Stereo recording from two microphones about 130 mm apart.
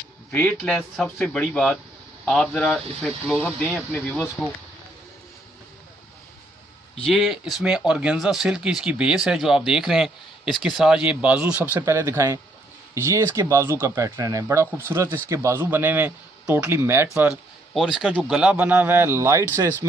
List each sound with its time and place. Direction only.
0.5 s speech: 5° left (ahead or behind)
7.1 s speech: centre (ahead or behind)
17.7 s speech: 5° right (ahead or behind); by 19.7 s 20° right (ahead or behind)